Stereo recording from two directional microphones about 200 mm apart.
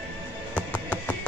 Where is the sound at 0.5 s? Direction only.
5° left (ahead or behind).